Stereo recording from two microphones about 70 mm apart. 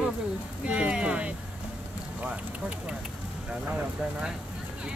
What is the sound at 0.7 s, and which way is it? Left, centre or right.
Music, centre.